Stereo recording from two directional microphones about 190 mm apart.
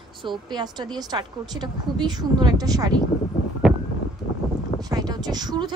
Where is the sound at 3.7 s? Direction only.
5° right (ahead or behind).